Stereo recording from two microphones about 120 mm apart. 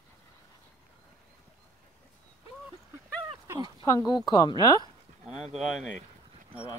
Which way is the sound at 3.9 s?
35° left (ahead or behind).